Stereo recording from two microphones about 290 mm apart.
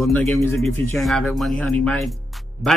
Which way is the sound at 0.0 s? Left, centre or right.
Centre.